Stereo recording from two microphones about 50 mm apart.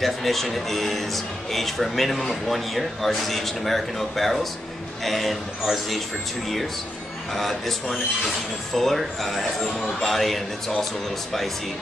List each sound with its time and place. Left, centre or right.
0.0 s a man's voice: centre
7.3 s a man's voice: centre
8.7 s a man's voice: centre